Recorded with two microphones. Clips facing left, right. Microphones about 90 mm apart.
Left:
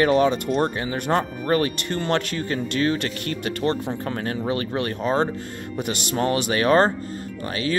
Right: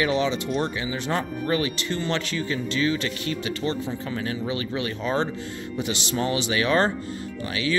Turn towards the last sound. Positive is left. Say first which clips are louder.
# left 1 dB
turn(degrees=40)  # may be behind; listen again after turning